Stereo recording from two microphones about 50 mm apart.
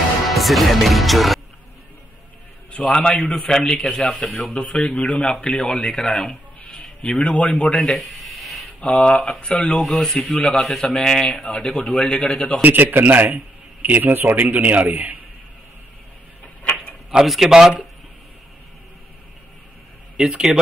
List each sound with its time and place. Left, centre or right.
0.3 s speech: centre
2.9 s a man's voice: centre
4.2 s a man's voice: left
6.6 s a sound: left
7.7 s a sound: centre
8.8 s a man's voice: left
12.6 s a man's voice: right
17.3 s speech: centre
20.2 s speech: centre